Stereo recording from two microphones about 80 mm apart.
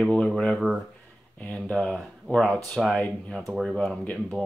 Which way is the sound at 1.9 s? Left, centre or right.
Centre.